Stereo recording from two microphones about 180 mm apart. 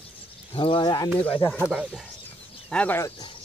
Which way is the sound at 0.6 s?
30° left (ahead or behind).